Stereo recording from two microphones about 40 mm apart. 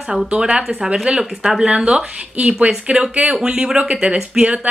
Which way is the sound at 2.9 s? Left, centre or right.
Right.